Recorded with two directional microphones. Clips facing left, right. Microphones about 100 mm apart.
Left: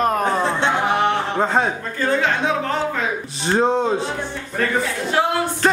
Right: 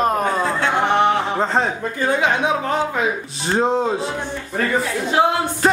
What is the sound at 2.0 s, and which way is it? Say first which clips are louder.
Speech: right 1 dB; 15° right (ahead or behind).